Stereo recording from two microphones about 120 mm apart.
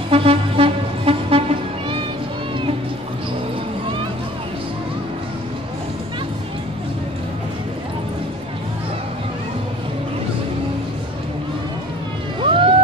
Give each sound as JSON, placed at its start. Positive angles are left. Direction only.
{"t": 0.1, "sound": "music", "side_deg": -50}
{"t": 12.4, "sound": "boat", "side_deg": -45}